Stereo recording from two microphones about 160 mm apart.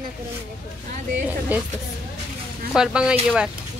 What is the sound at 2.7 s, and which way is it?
Speech, 5° right (ahead or behind).